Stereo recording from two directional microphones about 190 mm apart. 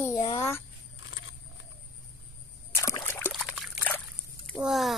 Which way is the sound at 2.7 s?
15° left (ahead or behind).